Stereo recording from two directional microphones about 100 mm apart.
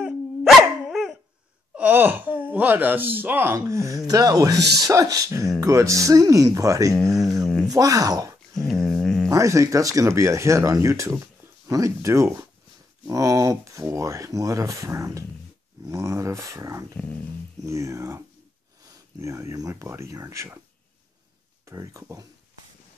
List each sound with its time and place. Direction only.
0.0 s dog: 5° right (ahead or behind)
1.8 s speech: 20° right (ahead or behind); by 8.4 s 35° right (ahead or behind)
8.5 s a sound: 5° left (ahead or behind)
9.3 s speech: 30° right (ahead or behind)
21.6 s speech: 35° right (ahead or behind)